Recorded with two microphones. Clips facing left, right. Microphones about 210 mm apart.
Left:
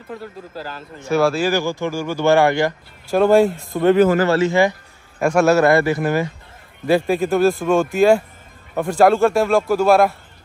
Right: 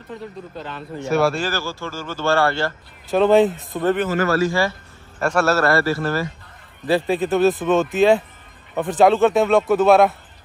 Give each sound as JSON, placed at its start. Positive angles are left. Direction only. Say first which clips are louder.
{"t": 0.1, "sound": "a man's voice", "louder": "left 1 dB", "side_deg": 0}
{"t": 1.5, "sound": "speech", "louder": "left 7 dB", "side_deg": 15}
{"t": 3.2, "sound": "a man's voice", "louder": "left 1 dB", "side_deg": 0}
{"t": 3.9, "sound": "speech", "louder": "left 9 dB", "side_deg": 40}
{"t": 4.3, "sound": "speech", "louder": "left 3 dB", "side_deg": 25}
{"t": 6.9, "sound": "a man's voice", "louder": "left 2 dB", "side_deg": 0}
{"t": 8.8, "sound": "a man's voice", "louder": "left 1 dB", "side_deg": 0}